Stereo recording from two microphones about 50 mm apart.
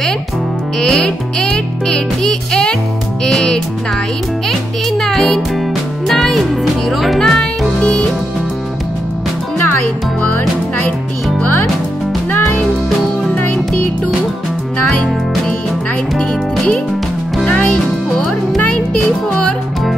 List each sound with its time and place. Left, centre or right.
0.7 s music: centre
4.5 s a child's voice: centre
6.0 s music: centre
7.8 s music: left
16.2 s speech: left
17.5 s music: left
18.1 s music: centre
18.7 s music: left